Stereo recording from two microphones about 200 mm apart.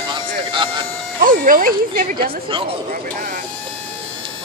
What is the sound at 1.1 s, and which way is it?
Speech, 45° right (ahead or behind).